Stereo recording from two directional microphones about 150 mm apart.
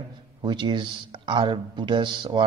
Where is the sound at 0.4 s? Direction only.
30° right (ahead or behind).